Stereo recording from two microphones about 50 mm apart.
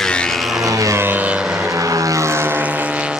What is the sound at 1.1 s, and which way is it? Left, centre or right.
Vehicle, right.